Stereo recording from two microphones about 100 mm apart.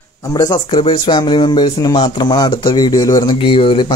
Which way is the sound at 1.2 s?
45° left (ahead or behind).